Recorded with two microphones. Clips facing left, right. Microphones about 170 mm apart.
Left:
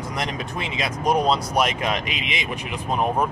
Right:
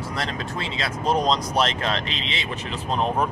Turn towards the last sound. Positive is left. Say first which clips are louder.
# left 1 dB
turn(degrees=10)  # may be behind; listen again after turning